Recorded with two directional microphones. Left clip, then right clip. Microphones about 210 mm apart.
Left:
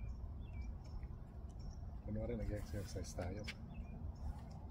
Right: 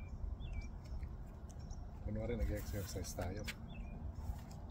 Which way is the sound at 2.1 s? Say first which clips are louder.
Right 2 dB; 15° right (ahead or behind).